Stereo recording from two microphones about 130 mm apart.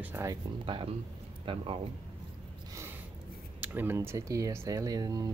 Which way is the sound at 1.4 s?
45° right (ahead or behind).